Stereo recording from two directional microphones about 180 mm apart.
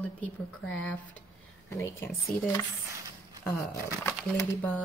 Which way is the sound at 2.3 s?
50° left (ahead or behind).